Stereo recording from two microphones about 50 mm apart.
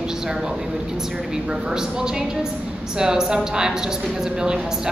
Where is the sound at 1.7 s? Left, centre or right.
Centre.